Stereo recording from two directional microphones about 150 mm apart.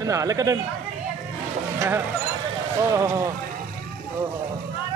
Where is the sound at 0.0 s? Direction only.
20° right (ahead or behind).